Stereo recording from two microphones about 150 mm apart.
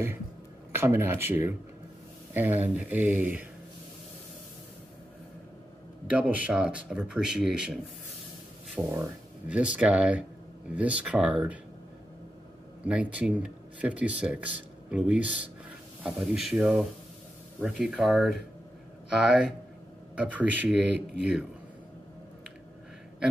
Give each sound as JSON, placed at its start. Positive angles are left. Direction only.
{"t": 0.7, "sound": "speech", "side_deg": -15}
{"t": 6.0, "sound": "speech", "side_deg": -10}
{"t": 12.8, "sound": "speech", "side_deg": -10}
{"t": 20.2, "sound": "speech", "side_deg": -10}